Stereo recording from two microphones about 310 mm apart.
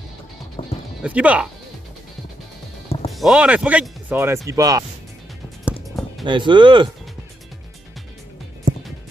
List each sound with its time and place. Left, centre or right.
0.6 s music: centre
1.0 s speech: centre
3.1 s speech: centre
5.7 s music: centre
6.2 s speech: centre